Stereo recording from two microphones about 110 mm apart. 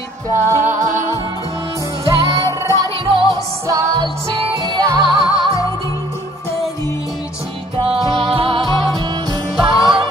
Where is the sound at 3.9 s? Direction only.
45° right (ahead or behind).